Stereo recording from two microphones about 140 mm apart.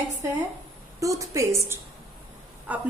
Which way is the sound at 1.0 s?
25° right (ahead or behind).